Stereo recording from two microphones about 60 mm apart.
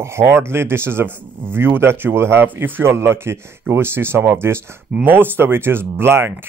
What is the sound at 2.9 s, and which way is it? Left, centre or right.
Speech, right.